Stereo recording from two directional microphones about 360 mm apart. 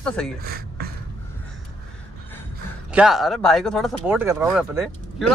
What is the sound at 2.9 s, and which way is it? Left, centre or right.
Speech, centre.